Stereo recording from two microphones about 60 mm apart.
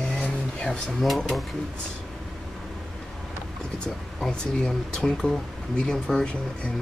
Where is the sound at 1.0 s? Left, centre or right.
Centre.